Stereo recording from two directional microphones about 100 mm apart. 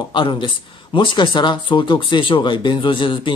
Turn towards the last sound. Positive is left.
turn(degrees=55)  # may be behind; listen again after turning